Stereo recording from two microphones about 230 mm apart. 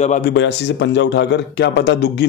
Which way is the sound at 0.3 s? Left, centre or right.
Left.